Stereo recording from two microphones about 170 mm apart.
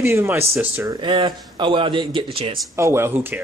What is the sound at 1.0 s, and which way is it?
Speech, 30° right (ahead or behind).